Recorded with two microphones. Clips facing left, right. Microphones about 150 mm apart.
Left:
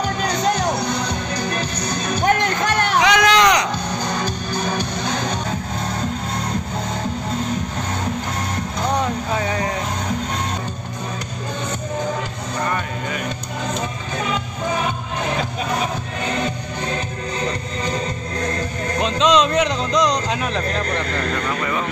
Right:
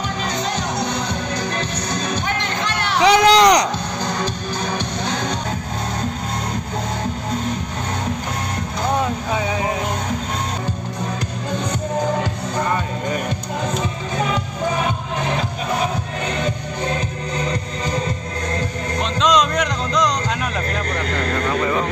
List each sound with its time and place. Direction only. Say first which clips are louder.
2.2 s music: left 5 dB; 45° left (ahead or behind)
3.0 s a sound: right 4 dB; 35° right (ahead or behind)
9.4 s music: even; 5° right (ahead or behind)
19.1 s music: left 1 dB; 5° left (ahead or behind)